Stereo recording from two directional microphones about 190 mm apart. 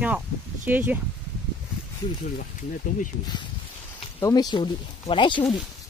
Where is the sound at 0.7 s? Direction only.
10° right (ahead or behind).